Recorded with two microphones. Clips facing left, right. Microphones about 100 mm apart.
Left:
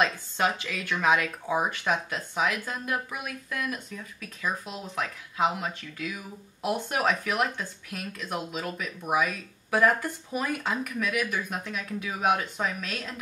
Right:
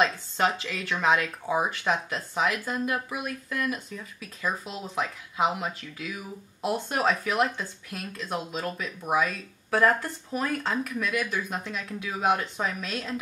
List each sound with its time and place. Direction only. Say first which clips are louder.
0.0 s speech: right 1 dB; centre (ahead or behind)